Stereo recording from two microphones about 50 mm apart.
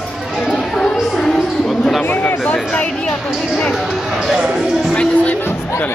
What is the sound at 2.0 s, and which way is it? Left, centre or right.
Speech, left.